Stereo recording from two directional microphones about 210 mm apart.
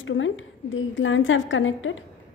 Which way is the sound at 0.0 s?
65° left (ahead or behind).